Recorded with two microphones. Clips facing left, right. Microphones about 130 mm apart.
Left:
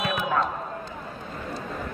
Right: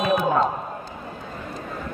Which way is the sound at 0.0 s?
35° right (ahead or behind).